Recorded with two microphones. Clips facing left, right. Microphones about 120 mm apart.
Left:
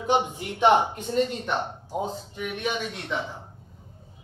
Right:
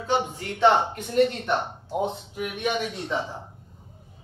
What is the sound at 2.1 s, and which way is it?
Speech, 5° right (ahead or behind).